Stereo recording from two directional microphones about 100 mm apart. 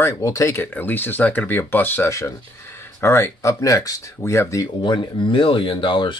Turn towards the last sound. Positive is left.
turn(degrees=55)  # may be behind; listen again after turning